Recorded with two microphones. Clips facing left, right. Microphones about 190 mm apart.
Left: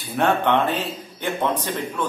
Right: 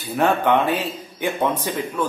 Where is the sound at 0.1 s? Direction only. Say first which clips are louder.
Right 1 dB; 5° right (ahead or behind).